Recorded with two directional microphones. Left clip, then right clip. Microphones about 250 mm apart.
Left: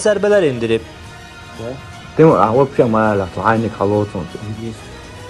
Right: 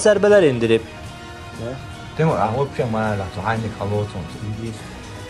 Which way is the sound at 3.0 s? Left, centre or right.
Left.